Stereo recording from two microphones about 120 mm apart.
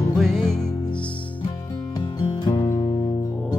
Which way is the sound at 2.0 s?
35° left (ahead or behind).